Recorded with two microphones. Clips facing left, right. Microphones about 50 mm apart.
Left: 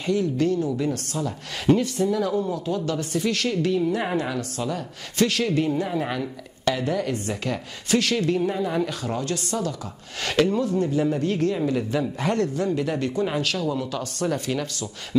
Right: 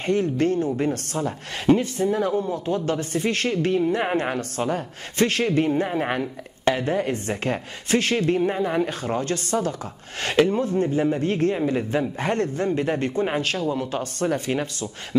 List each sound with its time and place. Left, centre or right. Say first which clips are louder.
0.0 s a woman's voice: right 1 dB; right